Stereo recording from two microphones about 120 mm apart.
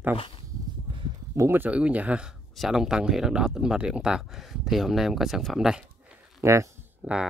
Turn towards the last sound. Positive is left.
turn(degrees=-15)  # may be behind; listen again after turning